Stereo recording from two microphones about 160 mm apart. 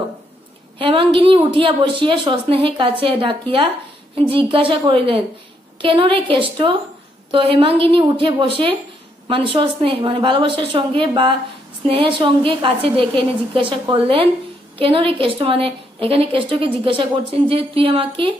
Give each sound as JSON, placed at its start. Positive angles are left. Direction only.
{"t": 0.7, "sound": "a woman's voice", "side_deg": -30}